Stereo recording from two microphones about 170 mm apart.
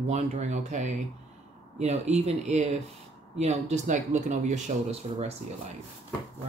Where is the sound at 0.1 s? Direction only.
40° right (ahead or behind).